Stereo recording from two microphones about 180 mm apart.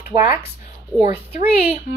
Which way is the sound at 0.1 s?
15° right (ahead or behind).